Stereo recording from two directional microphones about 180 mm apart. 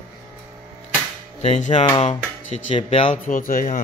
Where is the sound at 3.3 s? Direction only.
50° left (ahead or behind).